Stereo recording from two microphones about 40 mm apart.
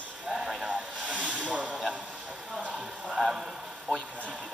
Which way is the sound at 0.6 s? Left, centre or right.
Right.